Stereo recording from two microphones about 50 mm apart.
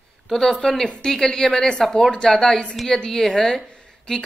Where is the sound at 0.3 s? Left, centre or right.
Centre.